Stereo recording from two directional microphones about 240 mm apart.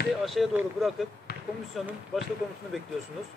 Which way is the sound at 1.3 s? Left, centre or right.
Left.